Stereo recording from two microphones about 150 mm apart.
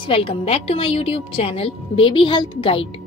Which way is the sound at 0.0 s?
35° left (ahead or behind).